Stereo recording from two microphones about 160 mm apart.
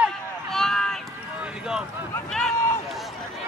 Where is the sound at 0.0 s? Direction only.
Centre (ahead or behind).